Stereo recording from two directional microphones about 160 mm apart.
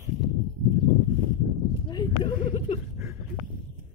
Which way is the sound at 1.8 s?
25° left (ahead or behind).